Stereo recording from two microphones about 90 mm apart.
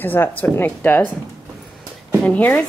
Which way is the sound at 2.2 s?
15° left (ahead or behind).